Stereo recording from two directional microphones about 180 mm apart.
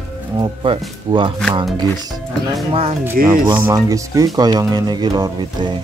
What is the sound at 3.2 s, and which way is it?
Speech, 55° right (ahead or behind).